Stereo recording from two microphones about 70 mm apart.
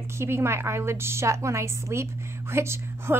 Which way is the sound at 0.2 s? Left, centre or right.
Right.